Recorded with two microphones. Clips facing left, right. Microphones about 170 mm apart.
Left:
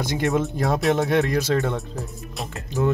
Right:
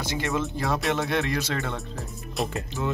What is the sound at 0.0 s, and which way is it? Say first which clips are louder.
Speech: left 5 dB; 50° left (ahead or behind).